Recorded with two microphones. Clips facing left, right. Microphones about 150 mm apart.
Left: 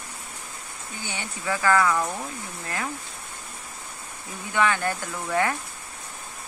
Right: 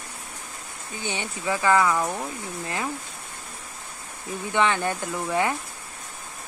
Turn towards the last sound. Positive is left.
turn(degrees=-20)  # may be behind; listen again after turning